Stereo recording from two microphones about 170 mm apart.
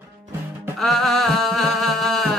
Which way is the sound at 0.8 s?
Centre (ahead or behind).